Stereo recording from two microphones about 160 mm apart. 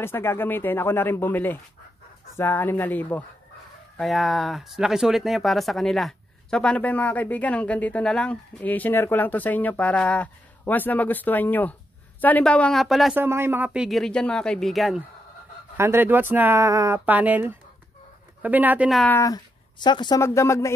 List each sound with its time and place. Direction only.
0.0 s speech: 15° left (ahead or behind); by 13.1 s centre (ahead or behind)
13.1 s speech: 15° right (ahead or behind)
13.8 s speech: centre (ahead or behind)
15.8 s speech: 15° right (ahead or behind)
19.0 s speech: 20° left (ahead or behind)